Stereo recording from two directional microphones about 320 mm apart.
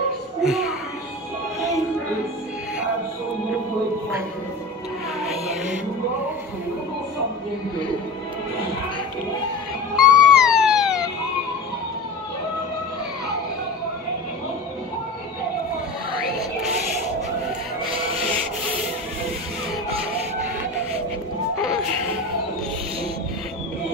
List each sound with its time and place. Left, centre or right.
0.4 s a child's voice: centre
9.9 s music: right
10.3 s police car: centre